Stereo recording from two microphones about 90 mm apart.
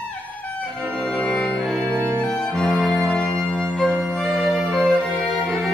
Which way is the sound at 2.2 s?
10° left (ahead or behind).